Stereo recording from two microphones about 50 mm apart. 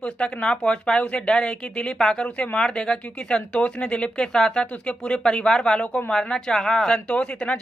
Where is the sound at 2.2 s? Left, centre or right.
Left.